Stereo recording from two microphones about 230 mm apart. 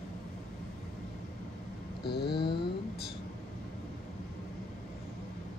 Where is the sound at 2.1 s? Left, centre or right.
Left.